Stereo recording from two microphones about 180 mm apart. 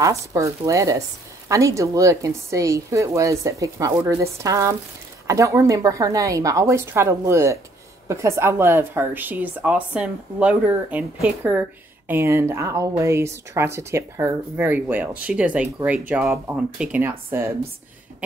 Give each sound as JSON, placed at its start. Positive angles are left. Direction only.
{"t": 0.0, "sound": "speech", "side_deg": -15}